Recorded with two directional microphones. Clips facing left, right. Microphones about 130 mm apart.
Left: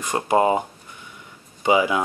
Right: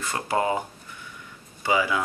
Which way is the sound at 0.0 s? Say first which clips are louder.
Left 6 dB; 20° left (ahead or behind).